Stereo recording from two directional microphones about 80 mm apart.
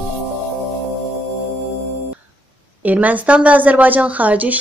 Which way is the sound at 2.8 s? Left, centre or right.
Centre.